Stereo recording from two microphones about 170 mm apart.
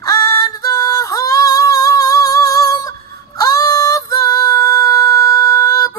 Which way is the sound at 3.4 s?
20° left (ahead or behind).